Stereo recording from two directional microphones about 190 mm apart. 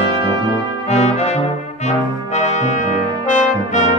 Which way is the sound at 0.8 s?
35° left (ahead or behind).